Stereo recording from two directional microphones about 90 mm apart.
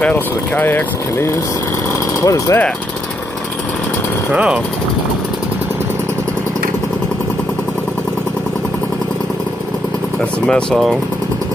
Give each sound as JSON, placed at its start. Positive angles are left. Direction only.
{"t": 0.0, "sound": "speech", "side_deg": 20}
{"t": 2.2, "sound": "speech", "side_deg": 35}
{"t": 4.3, "sound": "speech", "side_deg": -10}
{"t": 10.4, "sound": "speech", "side_deg": 5}